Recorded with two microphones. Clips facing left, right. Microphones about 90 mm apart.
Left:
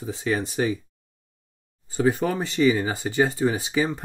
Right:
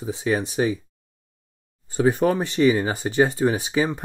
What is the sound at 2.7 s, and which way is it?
Speech, 20° right (ahead or behind).